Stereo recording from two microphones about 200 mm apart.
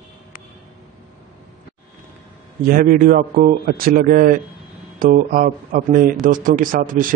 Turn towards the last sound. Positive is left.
turn(degrees=-45)  # may be behind; listen again after turning